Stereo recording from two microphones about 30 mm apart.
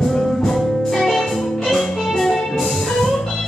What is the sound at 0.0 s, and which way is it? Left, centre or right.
Music, centre.